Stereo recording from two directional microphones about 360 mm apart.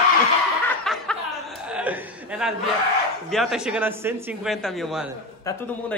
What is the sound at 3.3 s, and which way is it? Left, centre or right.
A man's voice, centre.